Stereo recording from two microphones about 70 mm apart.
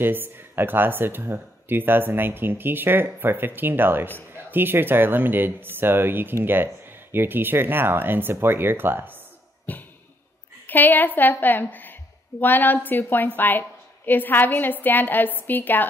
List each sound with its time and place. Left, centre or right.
0.0 s speech: right
9.7 s a sound: left
10.7 s a woman's voice: left